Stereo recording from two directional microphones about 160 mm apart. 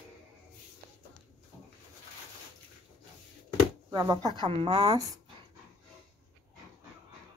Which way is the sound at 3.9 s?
20° right (ahead or behind).